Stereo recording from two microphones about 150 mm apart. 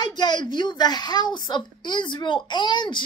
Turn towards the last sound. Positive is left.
turn(degrees=30)  # may be behind; listen again after turning